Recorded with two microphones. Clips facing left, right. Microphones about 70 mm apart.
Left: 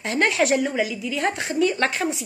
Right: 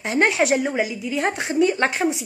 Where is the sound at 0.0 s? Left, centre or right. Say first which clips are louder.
Right 2 dB; centre.